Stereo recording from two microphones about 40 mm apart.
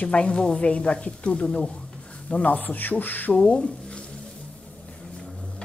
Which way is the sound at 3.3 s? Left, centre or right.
Left.